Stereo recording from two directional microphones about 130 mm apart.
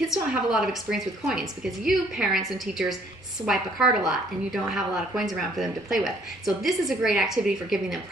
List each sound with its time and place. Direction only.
0.1 s a woman's voice: 5° right (ahead or behind)